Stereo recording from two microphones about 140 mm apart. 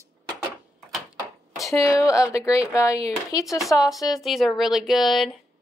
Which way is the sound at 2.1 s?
20° left (ahead or behind).